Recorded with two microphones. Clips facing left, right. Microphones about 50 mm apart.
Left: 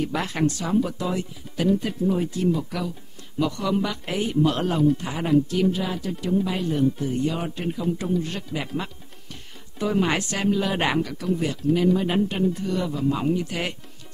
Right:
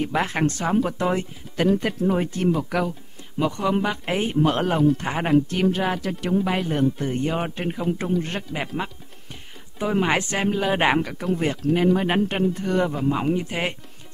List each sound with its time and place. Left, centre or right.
0.0 s speech: right
3.3 s speech: right
4.9 s speech: right
9.8 s speech: right
11.2 s speech: right
13.1 s speech: right